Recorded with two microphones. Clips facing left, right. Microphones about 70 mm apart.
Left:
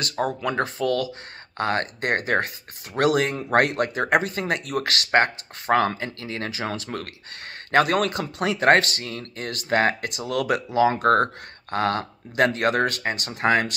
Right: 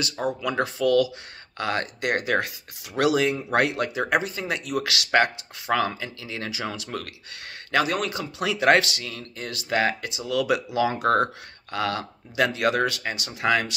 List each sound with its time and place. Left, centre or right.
0.0 s a man's voice: left
0.4 s speech: left
7.7 s a man's voice: left
8.4 s speech: left